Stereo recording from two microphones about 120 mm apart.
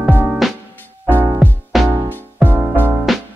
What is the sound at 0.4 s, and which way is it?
Music, centre (ahead or behind).